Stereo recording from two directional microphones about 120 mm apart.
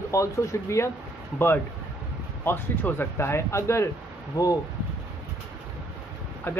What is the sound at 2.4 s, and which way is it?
Speech, 15° left (ahead or behind).